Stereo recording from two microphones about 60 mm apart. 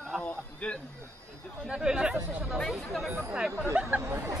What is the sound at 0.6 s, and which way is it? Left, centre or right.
Speech, left.